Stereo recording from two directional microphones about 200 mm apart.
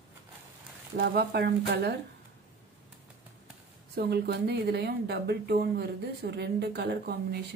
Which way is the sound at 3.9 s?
55° right (ahead or behind).